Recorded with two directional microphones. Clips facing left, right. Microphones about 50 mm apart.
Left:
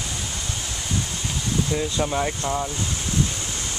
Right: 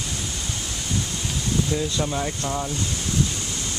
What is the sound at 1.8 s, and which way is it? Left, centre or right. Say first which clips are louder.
Speech: left 2 dB; centre.